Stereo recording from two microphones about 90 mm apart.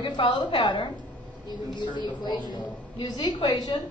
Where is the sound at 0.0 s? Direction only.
55° left (ahead or behind).